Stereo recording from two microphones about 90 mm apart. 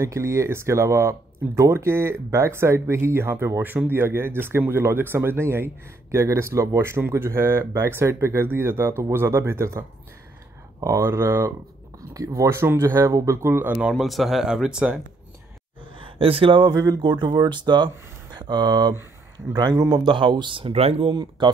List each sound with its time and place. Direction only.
0.0 s speech: 35° right (ahead or behind)
13.8 s speech: centre (ahead or behind)
16.2 s speech: 90° right
16.7 s speech: 50° right (ahead or behind); by 21.1 s 85° right
21.1 s speech: 55° right (ahead or behind)